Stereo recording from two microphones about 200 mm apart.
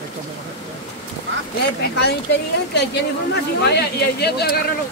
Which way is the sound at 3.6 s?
55° left (ahead or behind).